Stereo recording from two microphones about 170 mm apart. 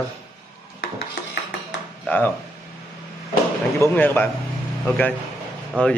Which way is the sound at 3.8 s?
10° left (ahead or behind).